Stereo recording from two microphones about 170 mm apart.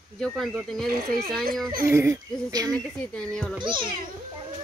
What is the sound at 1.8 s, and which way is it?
Speech, 15° right (ahead or behind).